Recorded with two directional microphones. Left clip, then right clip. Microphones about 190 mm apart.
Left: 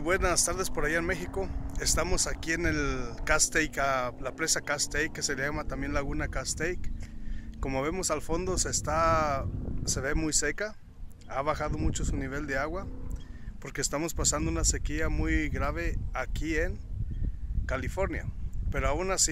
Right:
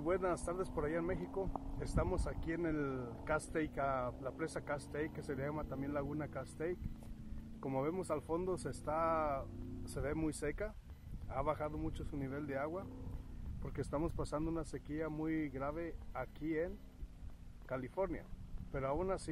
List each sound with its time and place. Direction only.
0.0 s speech: 15° left (ahead or behind)
13.7 s speech: 10° left (ahead or behind)